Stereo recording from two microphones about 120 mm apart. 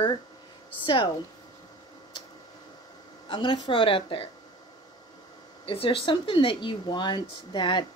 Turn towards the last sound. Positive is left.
turn(degrees=40)  # may be behind; listen again after turning